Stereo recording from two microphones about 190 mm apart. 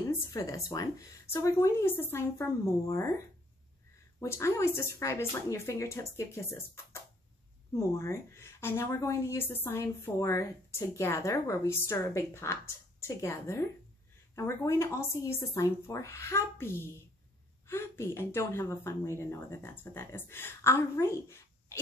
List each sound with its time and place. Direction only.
0.1 s a woman's voice: 15° left (ahead or behind)
4.2 s a woman's voice: 15° left (ahead or behind)